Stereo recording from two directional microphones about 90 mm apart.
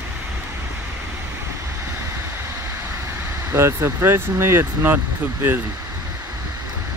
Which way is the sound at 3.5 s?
30° right (ahead or behind).